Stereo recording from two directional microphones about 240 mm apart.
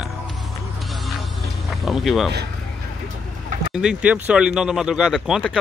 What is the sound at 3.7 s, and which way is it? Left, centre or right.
Speech, centre.